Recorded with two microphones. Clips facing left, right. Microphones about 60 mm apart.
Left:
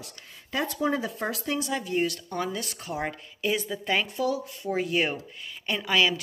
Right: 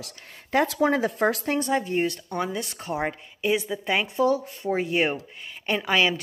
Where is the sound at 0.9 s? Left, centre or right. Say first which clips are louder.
Right 6 dB; right; by 4.1 s centre.